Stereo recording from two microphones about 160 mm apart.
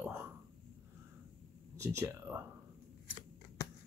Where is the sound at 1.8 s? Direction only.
15° right (ahead or behind).